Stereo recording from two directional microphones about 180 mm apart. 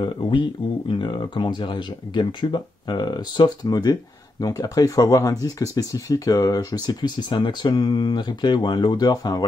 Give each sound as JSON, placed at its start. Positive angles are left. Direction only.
{"t": 0.0, "sound": "speech", "side_deg": 25}